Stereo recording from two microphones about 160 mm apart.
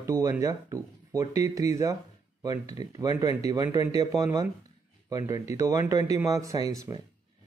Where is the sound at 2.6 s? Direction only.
40° left (ahead or behind).